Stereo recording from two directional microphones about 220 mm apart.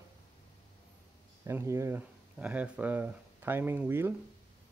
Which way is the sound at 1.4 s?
10° right (ahead or behind).